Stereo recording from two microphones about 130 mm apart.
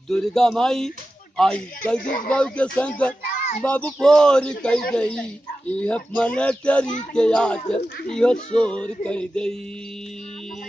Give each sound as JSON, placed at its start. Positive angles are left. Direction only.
{"t": 0.1, "sound": "speech", "side_deg": 5}
{"t": 2.0, "sound": "speech", "side_deg": 90}
{"t": 2.3, "sound": "speech", "side_deg": 10}